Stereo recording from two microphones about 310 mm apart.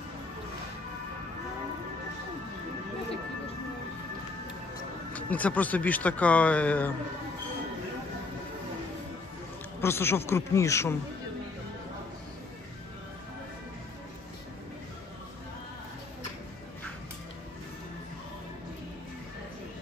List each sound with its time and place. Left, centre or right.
5.1 s speech: centre
9.8 s speech: centre